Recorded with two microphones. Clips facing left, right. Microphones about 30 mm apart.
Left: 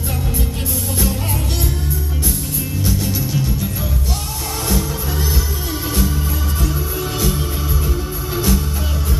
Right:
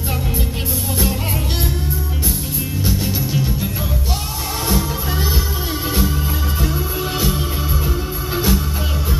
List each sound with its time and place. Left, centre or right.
2.8 s music: right
7.2 s music: centre
8.5 s music: right